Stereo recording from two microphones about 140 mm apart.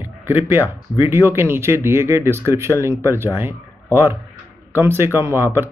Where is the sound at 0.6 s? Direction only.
35° left (ahead or behind).